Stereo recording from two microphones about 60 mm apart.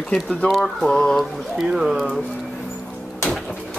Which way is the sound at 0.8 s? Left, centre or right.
Centre.